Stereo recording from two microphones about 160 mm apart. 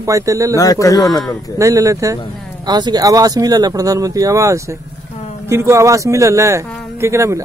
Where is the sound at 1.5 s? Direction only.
20° right (ahead or behind).